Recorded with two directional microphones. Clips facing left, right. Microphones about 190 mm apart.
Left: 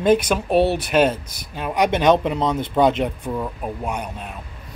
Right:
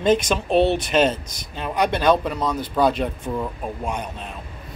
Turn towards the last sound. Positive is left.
turn(degrees=10)  # may be behind; listen again after turning